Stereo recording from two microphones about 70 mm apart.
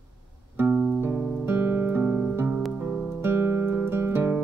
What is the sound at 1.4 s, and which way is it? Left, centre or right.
Music, right.